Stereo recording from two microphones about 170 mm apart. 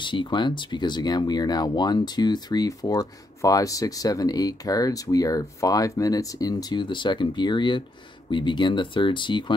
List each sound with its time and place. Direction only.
0.0 s speech: 30° left (ahead or behind)